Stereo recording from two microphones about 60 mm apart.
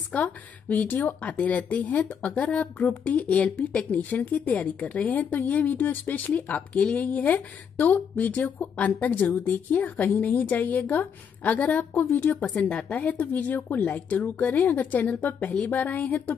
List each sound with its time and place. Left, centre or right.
0.1 s speech: left